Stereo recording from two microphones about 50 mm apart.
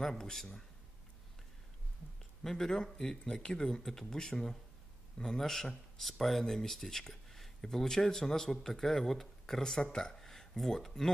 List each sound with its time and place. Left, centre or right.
0.0 s speech: centre
2.4 s speech: centre